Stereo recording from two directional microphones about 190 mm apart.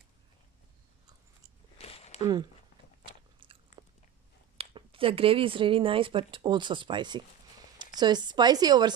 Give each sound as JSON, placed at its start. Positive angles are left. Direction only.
{"t": 1.8, "sound": "a sound", "side_deg": 30}
{"t": 3.1, "sound": "biting", "side_deg": -25}
{"t": 4.6, "sound": "speech", "side_deg": -30}